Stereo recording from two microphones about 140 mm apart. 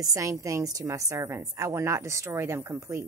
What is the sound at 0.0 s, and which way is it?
A woman's voice, 25° right (ahead or behind).